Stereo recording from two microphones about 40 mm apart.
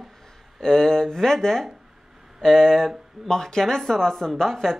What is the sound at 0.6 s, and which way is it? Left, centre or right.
Speech, centre.